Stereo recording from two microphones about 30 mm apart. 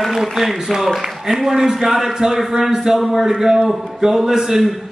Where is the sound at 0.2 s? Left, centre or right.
Centre.